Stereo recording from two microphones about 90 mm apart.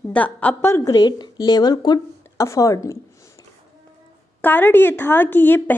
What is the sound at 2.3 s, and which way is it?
Speech, 35° left (ahead or behind).